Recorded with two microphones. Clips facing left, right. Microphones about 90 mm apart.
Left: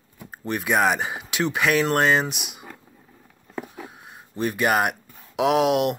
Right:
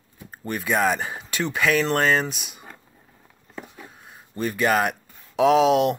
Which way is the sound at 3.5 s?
65° left (ahead or behind).